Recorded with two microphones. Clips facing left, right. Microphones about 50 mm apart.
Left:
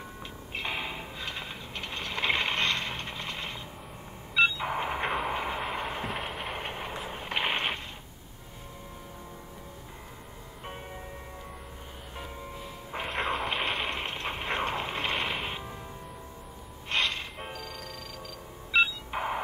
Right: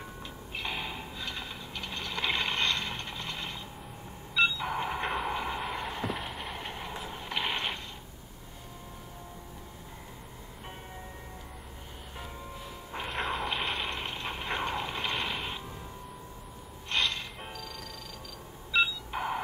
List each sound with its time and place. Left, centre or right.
0.6 s mechanisms: left
4.4 s a sound: left
5.0 s train: centre
5.3 s vehicle: left
6.0 s vehicle: centre
6.5 s vehicle: left
13.1 s a sound: centre
13.9 s vehicle: left
16.9 s music: centre
18.7 s a sound: centre